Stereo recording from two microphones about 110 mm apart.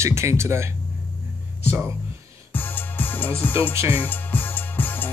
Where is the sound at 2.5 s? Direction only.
20° left (ahead or behind).